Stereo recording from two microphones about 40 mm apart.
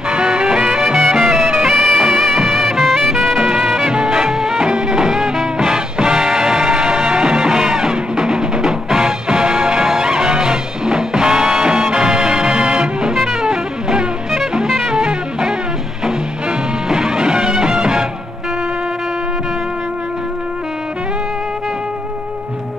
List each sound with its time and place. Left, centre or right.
0.1 s music: right
1.9 s music: centre
15.0 s music: right